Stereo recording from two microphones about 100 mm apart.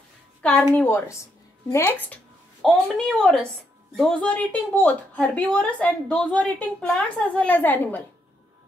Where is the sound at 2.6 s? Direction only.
Centre (ahead or behind).